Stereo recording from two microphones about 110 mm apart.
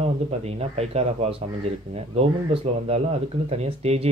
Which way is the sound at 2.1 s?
70° right (ahead or behind).